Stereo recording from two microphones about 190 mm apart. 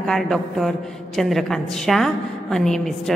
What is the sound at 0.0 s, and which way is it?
A woman's voice, centre (ahead or behind).